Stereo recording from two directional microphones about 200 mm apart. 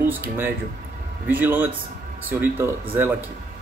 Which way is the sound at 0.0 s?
10° right (ahead or behind).